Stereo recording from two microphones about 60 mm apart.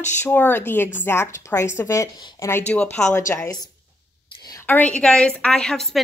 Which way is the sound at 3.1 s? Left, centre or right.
Left.